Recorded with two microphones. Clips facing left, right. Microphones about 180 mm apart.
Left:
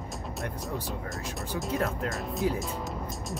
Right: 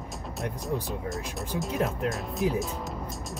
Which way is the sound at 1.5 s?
20° right (ahead or behind).